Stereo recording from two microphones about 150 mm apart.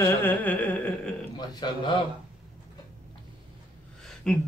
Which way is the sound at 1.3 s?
30° left (ahead or behind).